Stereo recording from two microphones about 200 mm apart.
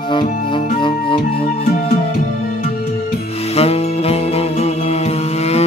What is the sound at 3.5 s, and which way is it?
Music, 30° left (ahead or behind).